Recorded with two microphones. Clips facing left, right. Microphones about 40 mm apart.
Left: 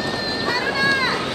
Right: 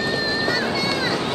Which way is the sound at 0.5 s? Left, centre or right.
Left.